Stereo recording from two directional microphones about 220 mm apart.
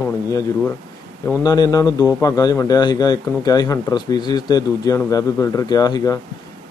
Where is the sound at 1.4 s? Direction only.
15° left (ahead or behind).